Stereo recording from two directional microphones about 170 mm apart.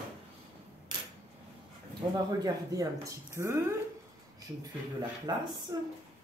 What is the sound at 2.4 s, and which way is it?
Speech, 20° right (ahead or behind).